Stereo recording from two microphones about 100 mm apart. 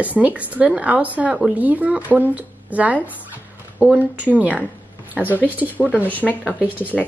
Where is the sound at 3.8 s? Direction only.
15° right (ahead or behind).